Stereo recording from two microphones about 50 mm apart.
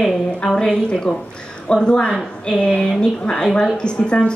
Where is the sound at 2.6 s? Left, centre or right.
Centre.